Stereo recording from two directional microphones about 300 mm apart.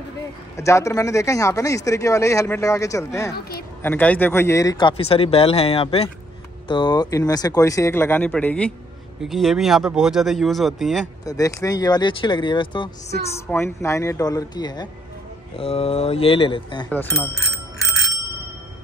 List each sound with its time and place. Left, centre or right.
0.6 s speech: centre
3.3 s a woman's voice: left
3.8 s speech: centre
11.2 s speech: centre
16.9 s speech: centre